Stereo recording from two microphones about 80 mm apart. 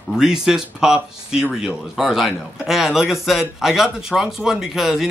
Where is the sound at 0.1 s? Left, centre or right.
Centre.